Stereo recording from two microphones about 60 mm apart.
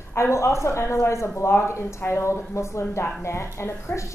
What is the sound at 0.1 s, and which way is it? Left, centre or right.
A woman's voice, left.